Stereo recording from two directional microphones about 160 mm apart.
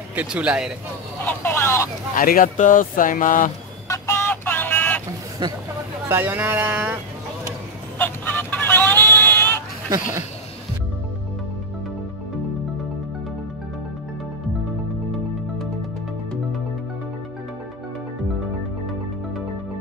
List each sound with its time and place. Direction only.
0.1 s speech: 10° right (ahead or behind)
1.2 s speech: 15° left (ahead or behind)
2.1 s speech: 60° left (ahead or behind)
3.9 s vehicle: 20° left (ahead or behind)
5.4 s speech: 25° right (ahead or behind)
6.0 s speech: 15° right (ahead or behind)
8.0 s vehicle: 10° left (ahead or behind)
9.8 s speech: 20° right (ahead or behind)